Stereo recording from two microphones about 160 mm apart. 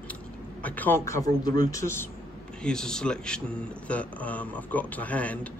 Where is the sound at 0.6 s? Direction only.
10° left (ahead or behind).